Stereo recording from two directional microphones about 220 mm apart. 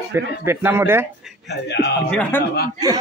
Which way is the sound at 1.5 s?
50° left (ahead or behind).